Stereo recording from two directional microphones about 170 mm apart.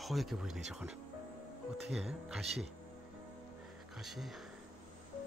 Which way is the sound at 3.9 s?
Centre (ahead or behind).